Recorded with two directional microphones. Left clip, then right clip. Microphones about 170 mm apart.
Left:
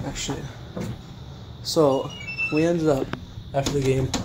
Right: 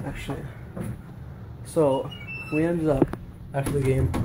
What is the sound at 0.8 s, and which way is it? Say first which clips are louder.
Vehicle: left 4 dB; 35° left (ahead or behind).